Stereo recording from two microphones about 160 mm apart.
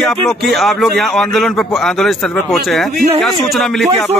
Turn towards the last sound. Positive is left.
turn(degrees=5)  # may be behind; listen again after turning